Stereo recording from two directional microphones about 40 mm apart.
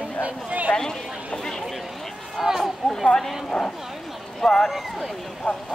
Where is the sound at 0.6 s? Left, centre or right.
Left.